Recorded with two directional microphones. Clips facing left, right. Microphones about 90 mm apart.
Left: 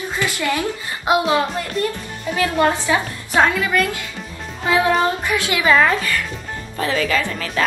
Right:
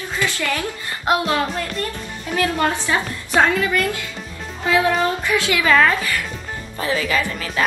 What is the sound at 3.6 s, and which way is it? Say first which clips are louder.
A child's voice: left 1 dB; 20° left (ahead or behind).